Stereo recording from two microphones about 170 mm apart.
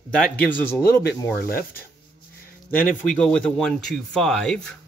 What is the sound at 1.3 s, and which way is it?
Speech, 60° left (ahead or behind).